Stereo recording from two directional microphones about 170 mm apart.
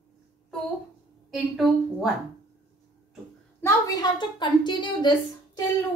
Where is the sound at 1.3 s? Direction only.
Centre (ahead or behind).